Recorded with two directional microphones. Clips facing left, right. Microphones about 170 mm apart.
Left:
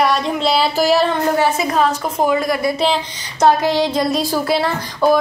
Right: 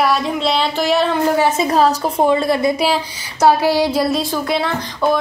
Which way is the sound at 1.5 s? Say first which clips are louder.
Right 2 dB; 30° right (ahead or behind).